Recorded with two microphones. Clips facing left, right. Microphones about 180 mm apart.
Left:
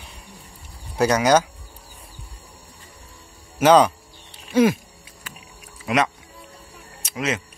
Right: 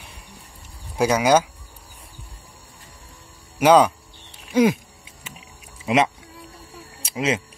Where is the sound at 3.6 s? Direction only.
10° right (ahead or behind).